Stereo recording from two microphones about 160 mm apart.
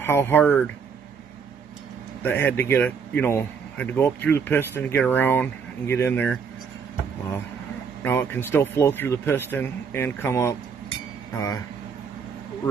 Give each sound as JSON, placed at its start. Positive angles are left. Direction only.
{"t": 0.0, "sound": "speech", "side_deg": 15}
{"t": 2.2, "sound": "speech", "side_deg": 15}
{"t": 8.0, "sound": "speech", "side_deg": 15}